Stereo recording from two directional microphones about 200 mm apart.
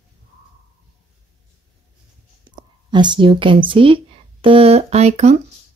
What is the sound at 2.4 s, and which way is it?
Speech, 20° right (ahead or behind).